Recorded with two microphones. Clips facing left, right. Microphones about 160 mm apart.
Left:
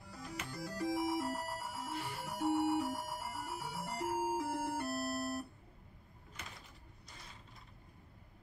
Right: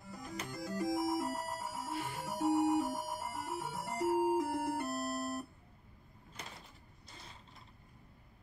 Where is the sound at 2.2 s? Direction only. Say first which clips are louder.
Right 3 dB; 15° right (ahead or behind).